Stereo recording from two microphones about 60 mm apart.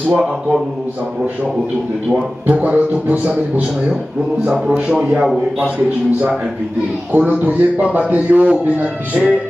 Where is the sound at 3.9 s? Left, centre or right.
Centre.